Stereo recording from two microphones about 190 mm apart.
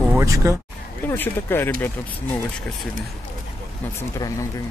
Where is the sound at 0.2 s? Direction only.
15° right (ahead or behind).